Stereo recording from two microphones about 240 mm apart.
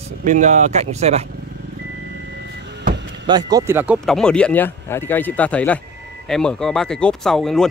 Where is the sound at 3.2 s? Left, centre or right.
Centre.